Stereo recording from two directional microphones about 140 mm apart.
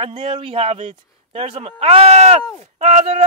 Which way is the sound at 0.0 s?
40° right (ahead or behind).